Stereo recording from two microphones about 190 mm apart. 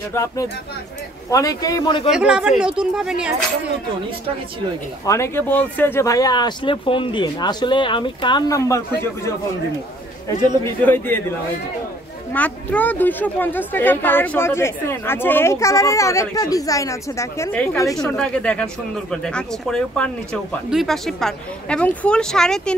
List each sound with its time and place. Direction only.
0.1 s a woman's voice: 15° left (ahead or behind)
2.0 s speech: 5° right (ahead or behind)
5.0 s speech: 15° left (ahead or behind)
10.6 s a woman's voice: 10° left (ahead or behind)
12.3 s a woman's voice: 10° left (ahead or behind)
18.0 s speech: 5° left (ahead or behind)